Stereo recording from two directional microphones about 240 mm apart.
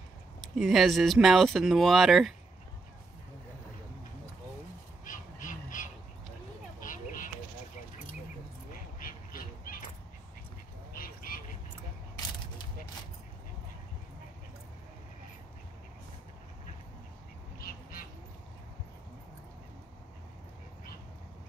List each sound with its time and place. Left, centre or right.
0.4 s speech: centre
5.0 s crow: left
6.8 s a sound: left
9.0 s squawk: left
10.9 s vehicle: left